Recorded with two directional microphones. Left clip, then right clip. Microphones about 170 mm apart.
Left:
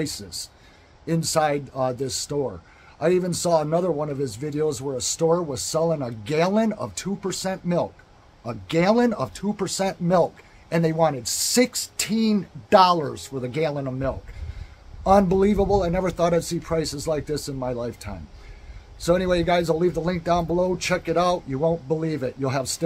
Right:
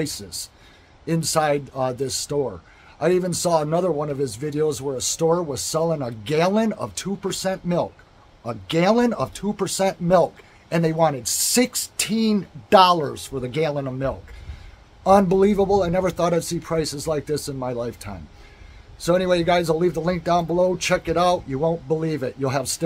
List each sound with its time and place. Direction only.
0.0 s speech: 10° right (ahead or behind)